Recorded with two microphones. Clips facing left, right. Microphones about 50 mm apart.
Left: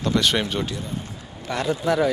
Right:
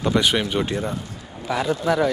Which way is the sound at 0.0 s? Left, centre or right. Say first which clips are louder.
Right 1 dB; centre.